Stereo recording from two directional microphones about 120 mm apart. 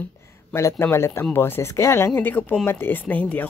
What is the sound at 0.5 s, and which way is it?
Speech, 20° left (ahead or behind).